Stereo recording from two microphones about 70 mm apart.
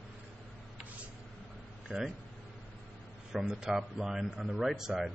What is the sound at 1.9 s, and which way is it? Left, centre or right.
Speech, centre.